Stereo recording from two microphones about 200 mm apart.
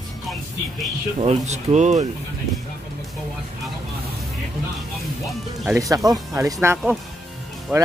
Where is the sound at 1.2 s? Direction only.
30° right (ahead or behind).